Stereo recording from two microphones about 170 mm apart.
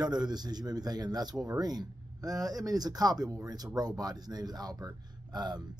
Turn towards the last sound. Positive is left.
turn(degrees=-25)  # may be behind; listen again after turning